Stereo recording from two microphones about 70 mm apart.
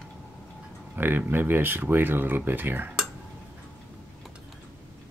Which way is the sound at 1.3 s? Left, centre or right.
Right.